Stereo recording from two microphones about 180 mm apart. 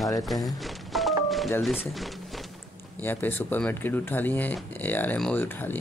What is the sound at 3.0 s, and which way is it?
Speech, 10° left (ahead or behind).